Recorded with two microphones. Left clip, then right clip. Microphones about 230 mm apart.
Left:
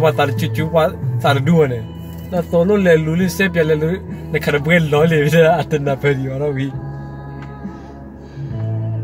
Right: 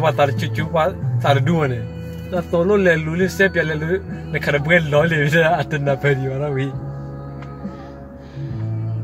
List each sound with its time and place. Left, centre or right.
0.0 s a man's voice: centre